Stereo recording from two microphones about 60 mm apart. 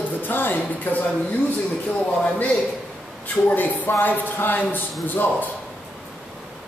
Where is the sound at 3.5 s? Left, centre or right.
Left.